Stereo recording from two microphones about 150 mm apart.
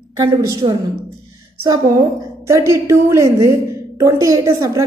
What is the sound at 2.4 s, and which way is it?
A woman's voice, 20° right (ahead or behind).